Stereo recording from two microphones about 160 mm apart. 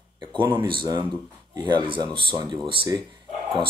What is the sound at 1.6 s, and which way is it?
Speech, 30° right (ahead or behind).